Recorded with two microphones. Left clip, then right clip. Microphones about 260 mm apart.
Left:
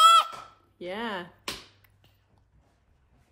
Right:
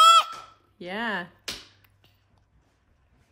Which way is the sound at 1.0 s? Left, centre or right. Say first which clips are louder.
Right 5 dB; right.